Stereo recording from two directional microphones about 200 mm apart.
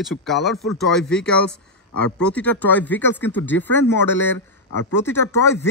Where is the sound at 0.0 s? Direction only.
Centre (ahead or behind).